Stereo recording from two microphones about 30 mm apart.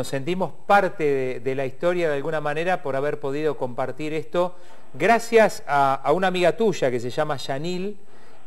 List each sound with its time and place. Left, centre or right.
0.0 s a man's voice: centre